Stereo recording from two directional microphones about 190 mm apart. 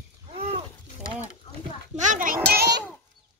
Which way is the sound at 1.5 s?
30° left (ahead or behind).